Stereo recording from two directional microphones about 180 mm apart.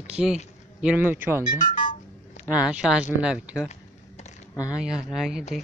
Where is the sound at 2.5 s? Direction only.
5° right (ahead or behind).